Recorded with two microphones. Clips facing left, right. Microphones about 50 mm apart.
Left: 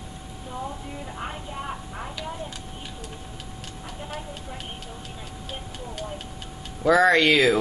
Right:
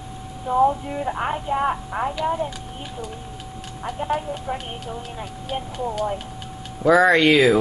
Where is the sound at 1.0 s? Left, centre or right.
Right.